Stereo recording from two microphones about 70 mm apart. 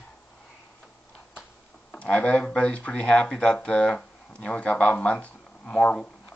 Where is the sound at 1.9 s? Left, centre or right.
Centre.